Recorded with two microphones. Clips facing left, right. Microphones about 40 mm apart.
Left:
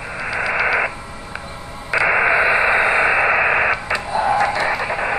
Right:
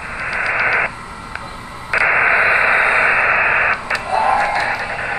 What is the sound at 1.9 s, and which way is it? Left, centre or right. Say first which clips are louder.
Radio: right 2 dB; centre.